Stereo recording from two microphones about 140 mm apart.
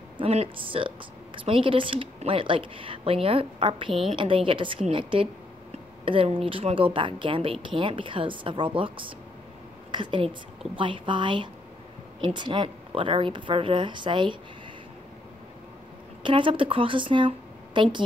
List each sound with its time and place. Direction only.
0.2 s a woman's voice: 45° right (ahead or behind)
16.2 s a woman's voice: 35° right (ahead or behind)